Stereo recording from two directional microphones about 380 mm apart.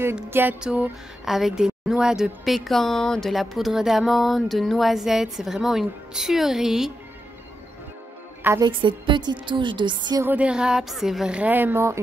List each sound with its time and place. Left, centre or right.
0.0 s speech: centre
8.5 s speech: centre